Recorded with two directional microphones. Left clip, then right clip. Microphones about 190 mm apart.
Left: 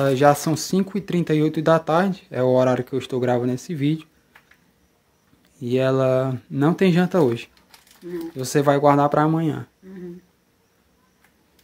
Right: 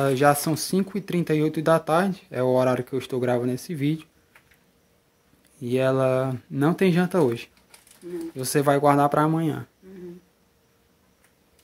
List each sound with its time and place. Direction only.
0.0 s speech: centre (ahead or behind)
5.6 s speech: centre (ahead or behind)